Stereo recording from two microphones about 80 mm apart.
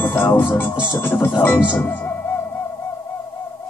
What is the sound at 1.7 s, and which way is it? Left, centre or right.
Speech, left.